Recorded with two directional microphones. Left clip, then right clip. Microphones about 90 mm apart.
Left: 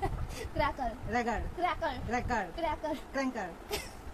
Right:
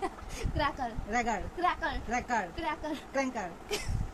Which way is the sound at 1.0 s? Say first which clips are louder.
Right 2 dB; 30° right (ahead or behind).